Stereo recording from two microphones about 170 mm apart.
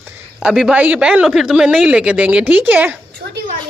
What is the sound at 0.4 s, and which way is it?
Speech, 5° right (ahead or behind).